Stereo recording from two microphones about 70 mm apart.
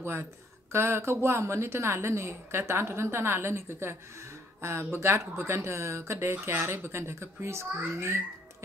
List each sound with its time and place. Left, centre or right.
0.0 s speech: right